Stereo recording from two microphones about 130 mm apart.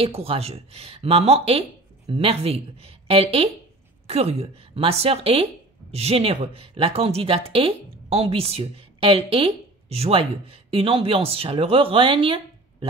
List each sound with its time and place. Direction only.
0.0 s speech: 45° right (ahead or behind)